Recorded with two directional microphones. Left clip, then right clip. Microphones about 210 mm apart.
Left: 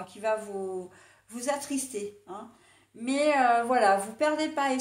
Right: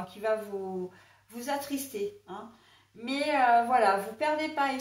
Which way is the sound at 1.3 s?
45° left (ahead or behind).